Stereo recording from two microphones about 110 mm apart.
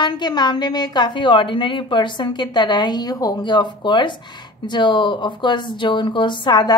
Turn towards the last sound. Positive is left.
turn(degrees=40)  # may be behind; listen again after turning